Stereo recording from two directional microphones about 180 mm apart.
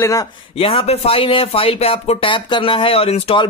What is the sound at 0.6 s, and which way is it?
Speech, 30° left (ahead or behind).